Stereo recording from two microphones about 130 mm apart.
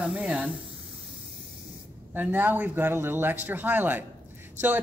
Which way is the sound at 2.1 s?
15° right (ahead or behind).